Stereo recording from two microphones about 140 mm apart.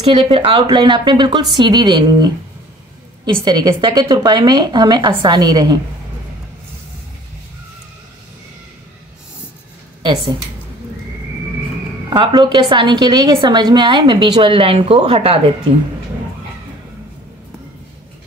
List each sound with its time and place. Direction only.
0.0 s a woman's voice: 40° right (ahead or behind)
12.1 s a woman's voice: 35° right (ahead or behind)